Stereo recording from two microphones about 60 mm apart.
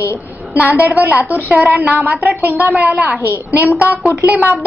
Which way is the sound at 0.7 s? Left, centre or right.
Right.